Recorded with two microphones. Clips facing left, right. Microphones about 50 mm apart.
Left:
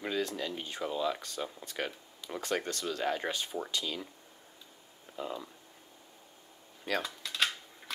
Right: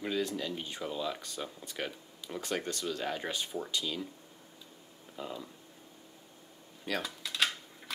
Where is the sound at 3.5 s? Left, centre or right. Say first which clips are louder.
Left 1 dB; centre.